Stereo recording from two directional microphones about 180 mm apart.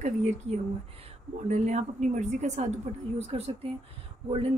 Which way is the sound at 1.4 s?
40° right (ahead or behind).